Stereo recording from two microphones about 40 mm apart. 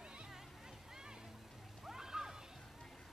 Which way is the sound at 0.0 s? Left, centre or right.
Right.